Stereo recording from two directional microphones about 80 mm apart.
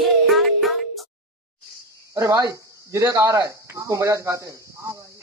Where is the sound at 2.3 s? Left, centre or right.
Right.